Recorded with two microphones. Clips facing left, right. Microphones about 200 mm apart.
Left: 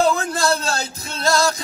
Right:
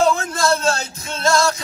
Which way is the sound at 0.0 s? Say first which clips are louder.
Right 1 dB; 35° left (ahead or behind).